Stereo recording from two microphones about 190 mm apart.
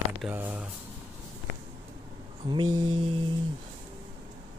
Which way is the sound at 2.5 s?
20° right (ahead or behind).